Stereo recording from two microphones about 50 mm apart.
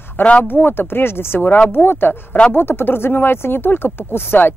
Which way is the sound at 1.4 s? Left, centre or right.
Left.